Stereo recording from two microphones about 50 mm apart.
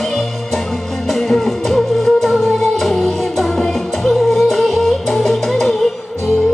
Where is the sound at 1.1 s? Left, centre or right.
Centre.